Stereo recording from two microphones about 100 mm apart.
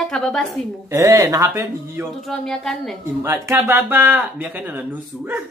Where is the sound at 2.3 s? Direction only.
5° left (ahead or behind).